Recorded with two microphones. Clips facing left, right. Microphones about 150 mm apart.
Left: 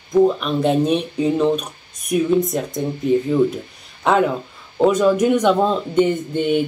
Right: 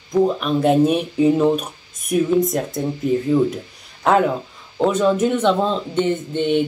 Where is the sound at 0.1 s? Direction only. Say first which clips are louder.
Left 2 dB; centre (ahead or behind).